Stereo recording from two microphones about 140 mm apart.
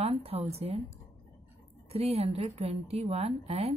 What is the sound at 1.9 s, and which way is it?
Speech, 45° right (ahead or behind).